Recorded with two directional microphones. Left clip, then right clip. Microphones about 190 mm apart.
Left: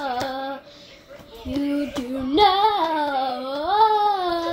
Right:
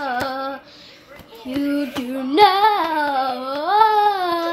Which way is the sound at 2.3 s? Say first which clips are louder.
Right 3 dB; 25° right (ahead or behind).